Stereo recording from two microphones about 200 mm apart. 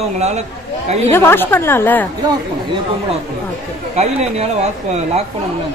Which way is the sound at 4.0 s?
35° right (ahead or behind).